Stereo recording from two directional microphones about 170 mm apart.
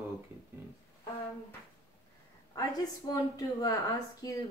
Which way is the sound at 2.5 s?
20° left (ahead or behind).